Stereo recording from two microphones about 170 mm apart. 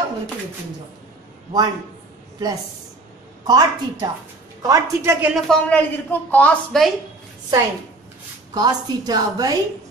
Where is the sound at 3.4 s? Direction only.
25° right (ahead or behind).